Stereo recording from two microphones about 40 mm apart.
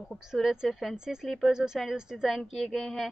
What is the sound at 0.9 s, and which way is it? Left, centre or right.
Speech, centre.